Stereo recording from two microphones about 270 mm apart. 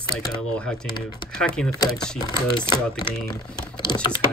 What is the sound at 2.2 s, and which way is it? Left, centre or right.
Speech, centre.